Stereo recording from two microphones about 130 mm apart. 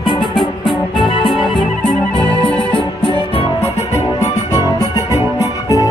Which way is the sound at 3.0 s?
45° left (ahead or behind).